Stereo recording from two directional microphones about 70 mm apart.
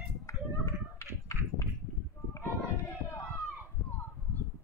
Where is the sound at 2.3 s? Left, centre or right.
Left.